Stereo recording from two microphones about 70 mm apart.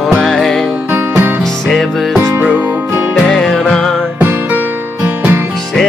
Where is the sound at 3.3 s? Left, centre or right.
Centre.